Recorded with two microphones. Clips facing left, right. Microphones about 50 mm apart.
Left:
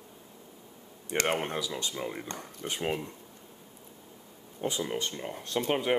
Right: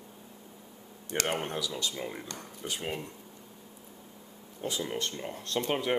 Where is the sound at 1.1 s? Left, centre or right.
Left.